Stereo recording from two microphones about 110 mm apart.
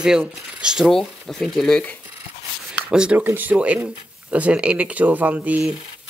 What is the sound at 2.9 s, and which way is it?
Speech, 10° right (ahead or behind).